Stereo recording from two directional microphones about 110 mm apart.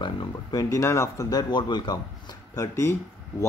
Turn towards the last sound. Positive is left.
turn(degrees=25)  # may be behind; listen again after turning